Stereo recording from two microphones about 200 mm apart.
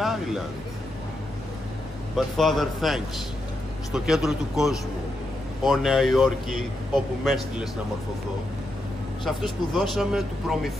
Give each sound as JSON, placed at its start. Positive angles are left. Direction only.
{"t": 0.0, "sound": "a sound", "side_deg": 0}
{"t": 2.1, "sound": "speech", "side_deg": 0}
{"t": 9.2, "sound": "speech", "side_deg": 0}